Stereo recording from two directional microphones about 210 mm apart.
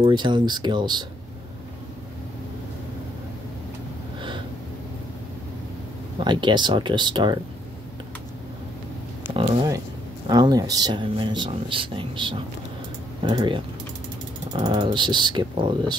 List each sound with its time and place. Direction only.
0.0 s speech: 20° right (ahead or behind)
6.1 s speech: 20° right (ahead or behind)
10.2 s speech: 20° right (ahead or behind)